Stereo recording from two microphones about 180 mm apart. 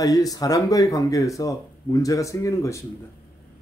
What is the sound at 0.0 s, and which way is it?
Speech, 20° left (ahead or behind).